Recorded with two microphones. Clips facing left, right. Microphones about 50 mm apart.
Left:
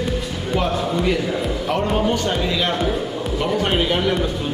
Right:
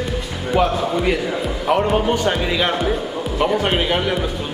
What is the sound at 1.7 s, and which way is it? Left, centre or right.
Speech, centre.